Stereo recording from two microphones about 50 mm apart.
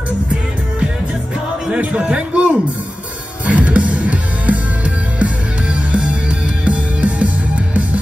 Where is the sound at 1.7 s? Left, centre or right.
Right.